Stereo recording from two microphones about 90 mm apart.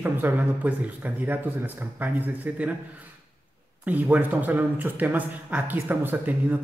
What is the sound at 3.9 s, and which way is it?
Speech, 20° right (ahead or behind).